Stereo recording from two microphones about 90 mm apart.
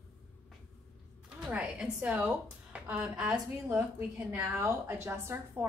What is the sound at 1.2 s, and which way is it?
A woman's voice, 10° right (ahead or behind).